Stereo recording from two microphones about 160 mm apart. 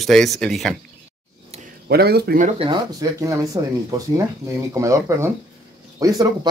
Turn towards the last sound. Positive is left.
turn(degrees=-20)  # may be behind; listen again after turning